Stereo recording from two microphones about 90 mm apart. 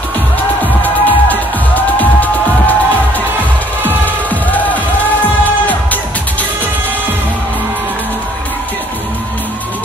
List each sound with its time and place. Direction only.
0.8 s music: 20° left (ahead or behind)
4.0 s music: 20° left (ahead or behind)